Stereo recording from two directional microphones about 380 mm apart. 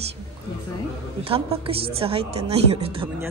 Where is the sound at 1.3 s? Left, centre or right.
Centre.